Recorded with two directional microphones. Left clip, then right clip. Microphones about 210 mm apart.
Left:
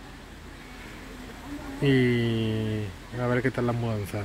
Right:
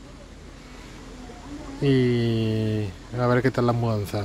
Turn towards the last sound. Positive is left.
turn(degrees=-25)  # may be behind; listen again after turning